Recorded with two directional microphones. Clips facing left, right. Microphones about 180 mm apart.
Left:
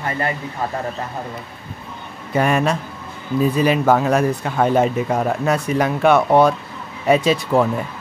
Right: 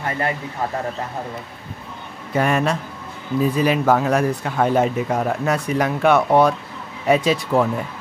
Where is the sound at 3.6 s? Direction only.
25° left (ahead or behind).